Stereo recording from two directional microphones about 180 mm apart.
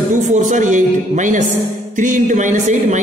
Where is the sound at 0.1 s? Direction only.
45° right (ahead or behind).